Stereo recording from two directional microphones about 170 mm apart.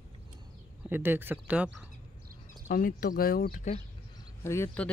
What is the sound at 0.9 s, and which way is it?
Speech, 10° right (ahead or behind).